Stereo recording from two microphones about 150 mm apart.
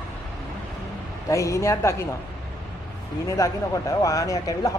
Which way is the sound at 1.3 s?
20° left (ahead or behind).